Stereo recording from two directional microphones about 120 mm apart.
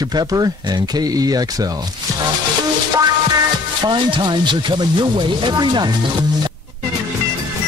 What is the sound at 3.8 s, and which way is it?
Speech, 40° right (ahead or behind).